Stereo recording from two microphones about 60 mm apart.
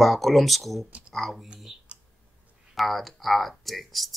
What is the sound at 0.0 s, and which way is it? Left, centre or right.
Speech, centre.